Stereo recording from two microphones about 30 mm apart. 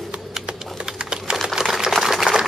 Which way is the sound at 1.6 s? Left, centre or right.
Right.